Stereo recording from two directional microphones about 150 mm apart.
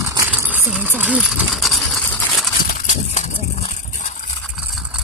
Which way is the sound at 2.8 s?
50° left (ahead or behind).